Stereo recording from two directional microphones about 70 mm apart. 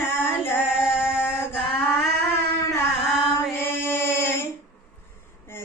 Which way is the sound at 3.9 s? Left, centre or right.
Left.